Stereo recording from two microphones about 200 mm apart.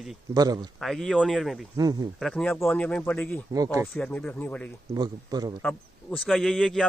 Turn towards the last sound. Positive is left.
turn(degrees=0)  # may be behind; listen again after turning